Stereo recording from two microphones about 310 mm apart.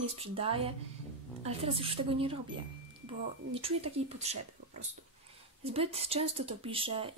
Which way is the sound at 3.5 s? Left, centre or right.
Centre.